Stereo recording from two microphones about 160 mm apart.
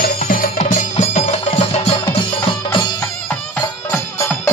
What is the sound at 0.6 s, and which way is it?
Music, 50° left (ahead or behind).